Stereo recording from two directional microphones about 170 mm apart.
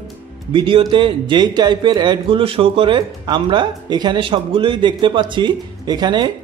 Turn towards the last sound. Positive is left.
turn(degrees=-25)  # may be behind; listen again after turning